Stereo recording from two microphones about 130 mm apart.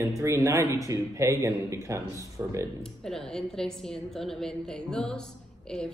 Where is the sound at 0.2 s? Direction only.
25° right (ahead or behind).